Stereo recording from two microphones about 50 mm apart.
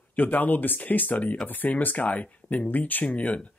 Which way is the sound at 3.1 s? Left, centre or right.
Left.